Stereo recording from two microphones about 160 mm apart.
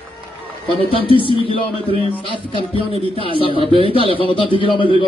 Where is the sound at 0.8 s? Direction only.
35° left (ahead or behind).